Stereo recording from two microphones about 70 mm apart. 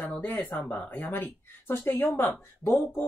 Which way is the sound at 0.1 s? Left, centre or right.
Left.